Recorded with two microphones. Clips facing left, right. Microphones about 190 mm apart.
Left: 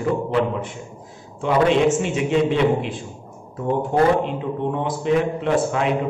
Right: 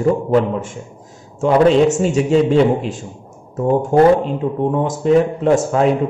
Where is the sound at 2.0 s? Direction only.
40° right (ahead or behind).